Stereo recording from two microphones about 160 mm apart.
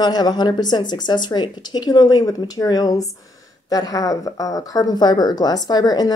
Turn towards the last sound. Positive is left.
turn(degrees=25)  # may be behind; listen again after turning